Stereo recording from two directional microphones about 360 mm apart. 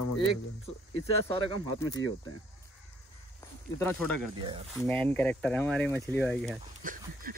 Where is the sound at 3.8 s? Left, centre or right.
Centre.